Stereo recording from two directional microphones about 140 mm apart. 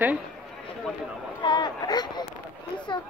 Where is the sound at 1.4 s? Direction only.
30° left (ahead or behind).